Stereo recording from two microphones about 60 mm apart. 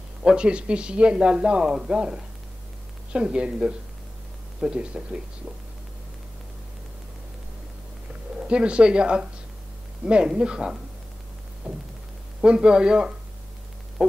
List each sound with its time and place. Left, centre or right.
0.2 s speech: centre
8.4 s speech: centre